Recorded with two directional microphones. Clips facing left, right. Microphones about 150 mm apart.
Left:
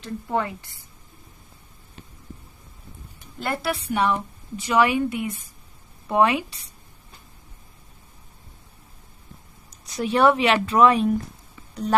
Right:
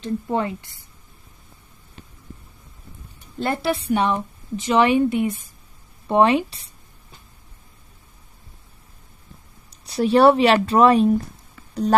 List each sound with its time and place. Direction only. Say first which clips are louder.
0.0 s a woman's voice: right 3 dB; 20° right (ahead or behind)
3.3 s a woman's voice: right 4 dB; 25° right (ahead or behind)
9.8 s speech: right 4 dB; 30° right (ahead or behind)